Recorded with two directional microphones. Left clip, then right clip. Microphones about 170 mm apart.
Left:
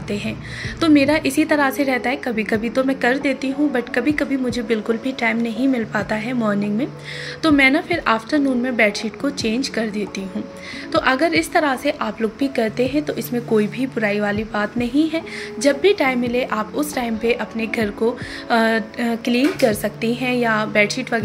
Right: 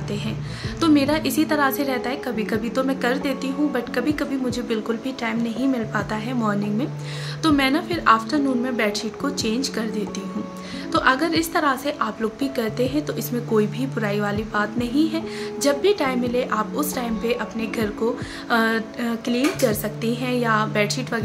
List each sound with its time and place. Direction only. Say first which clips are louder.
0.7 s a woman's voice: left 3 dB; 15° left (ahead or behind)